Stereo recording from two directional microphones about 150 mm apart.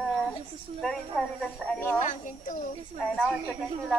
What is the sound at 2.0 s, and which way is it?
Speech, 55° left (ahead or behind).